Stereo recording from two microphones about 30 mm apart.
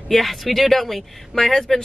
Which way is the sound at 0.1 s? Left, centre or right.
Centre.